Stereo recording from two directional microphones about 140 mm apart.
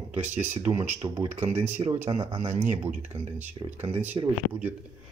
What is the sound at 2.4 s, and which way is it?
Speech, 50° right (ahead or behind).